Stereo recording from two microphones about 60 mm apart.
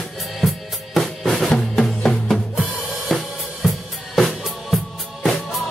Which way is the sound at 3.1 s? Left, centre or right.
Centre.